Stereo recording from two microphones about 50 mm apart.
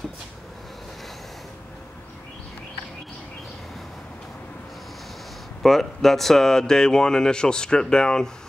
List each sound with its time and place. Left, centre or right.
5.6 s speech: centre